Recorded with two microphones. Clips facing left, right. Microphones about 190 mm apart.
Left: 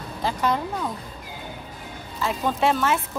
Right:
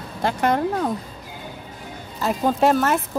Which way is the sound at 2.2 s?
40° right (ahead or behind).